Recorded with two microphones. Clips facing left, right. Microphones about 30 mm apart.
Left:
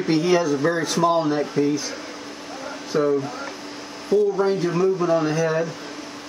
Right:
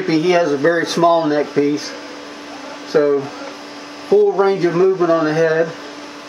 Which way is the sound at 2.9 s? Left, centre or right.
Right.